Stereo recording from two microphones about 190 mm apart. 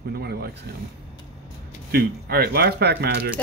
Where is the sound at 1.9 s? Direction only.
55° right (ahead or behind).